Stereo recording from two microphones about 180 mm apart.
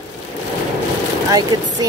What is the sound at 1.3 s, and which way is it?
Speech, 20° right (ahead or behind).